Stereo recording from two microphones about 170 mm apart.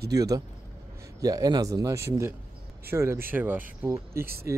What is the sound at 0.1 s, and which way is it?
Speech, 20° right (ahead or behind).